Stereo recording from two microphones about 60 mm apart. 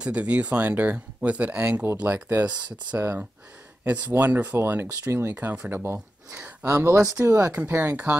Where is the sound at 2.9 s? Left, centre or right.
Right.